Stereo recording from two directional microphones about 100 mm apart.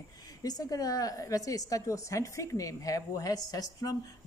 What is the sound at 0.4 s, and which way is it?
A woman's voice, 40° left (ahead or behind).